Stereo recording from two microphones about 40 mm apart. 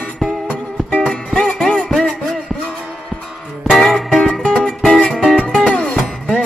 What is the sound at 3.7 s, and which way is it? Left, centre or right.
Music, centre.